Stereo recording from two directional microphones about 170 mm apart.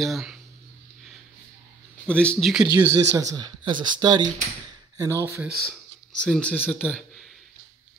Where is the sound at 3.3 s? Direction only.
25° right (ahead or behind).